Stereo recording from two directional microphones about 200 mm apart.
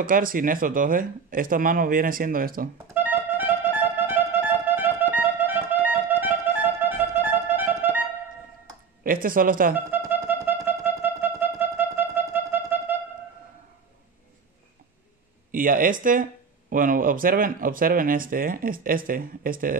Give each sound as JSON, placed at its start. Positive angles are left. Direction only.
{"t": 0.0, "sound": "speech", "side_deg": -45}
{"t": 2.9, "sound": "music", "side_deg": -10}
{"t": 9.0, "sound": "speech", "side_deg": -45}
{"t": 9.8, "sound": "music", "side_deg": -10}
{"t": 15.5, "sound": "speech", "side_deg": -45}